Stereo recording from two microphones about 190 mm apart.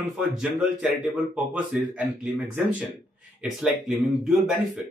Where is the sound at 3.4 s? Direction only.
5° right (ahead or behind).